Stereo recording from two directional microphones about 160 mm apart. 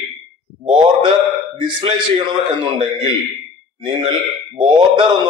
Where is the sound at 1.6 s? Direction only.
30° right (ahead or behind).